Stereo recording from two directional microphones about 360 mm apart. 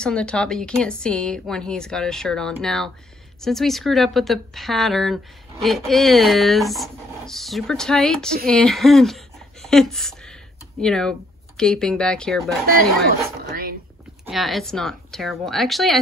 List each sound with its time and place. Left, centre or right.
0.0 s a woman's voice: centre
14.2 s a woman's voice: centre